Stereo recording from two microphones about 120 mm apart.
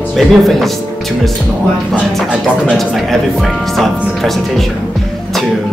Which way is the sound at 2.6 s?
Centre (ahead or behind).